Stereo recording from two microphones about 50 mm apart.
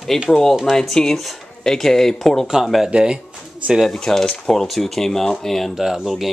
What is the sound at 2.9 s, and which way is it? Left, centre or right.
Speech, centre.